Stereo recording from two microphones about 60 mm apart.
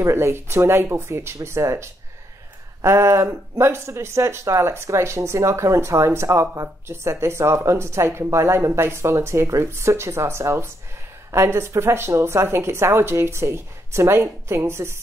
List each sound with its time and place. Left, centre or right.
0.0 s speech: right